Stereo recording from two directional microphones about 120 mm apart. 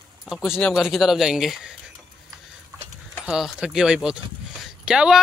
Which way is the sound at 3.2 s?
5° right (ahead or behind).